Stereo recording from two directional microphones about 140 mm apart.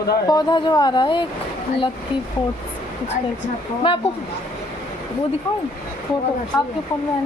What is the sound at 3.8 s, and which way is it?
Speech, 40° left (ahead or behind).